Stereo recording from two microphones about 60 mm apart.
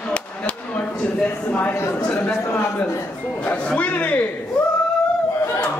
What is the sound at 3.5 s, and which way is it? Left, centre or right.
Speech, left.